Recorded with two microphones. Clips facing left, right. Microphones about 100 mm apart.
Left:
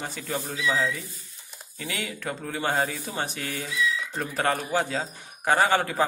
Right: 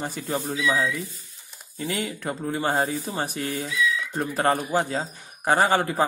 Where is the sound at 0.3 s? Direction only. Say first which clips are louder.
Right 3 dB; 10° right (ahead or behind).